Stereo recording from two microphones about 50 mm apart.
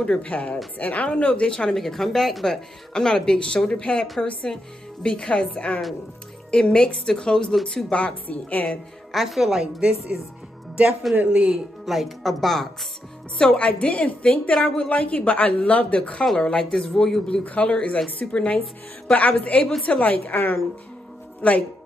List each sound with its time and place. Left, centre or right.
0.0 s a woman's voice: left
1.8 s a woman's voice: centre
6.5 s a woman's voice: centre
9.1 s a woman's voice: centre; by 11.2 s right
11.5 s a woman's voice: centre
13.4 s a woman's voice: left
17.3 s a woman's voice: left
21.4 s speech: left